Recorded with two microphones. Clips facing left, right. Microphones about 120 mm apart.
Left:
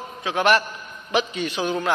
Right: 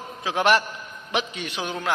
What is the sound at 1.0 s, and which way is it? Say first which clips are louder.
Speech: left 5 dB; 10° right (ahead or behind).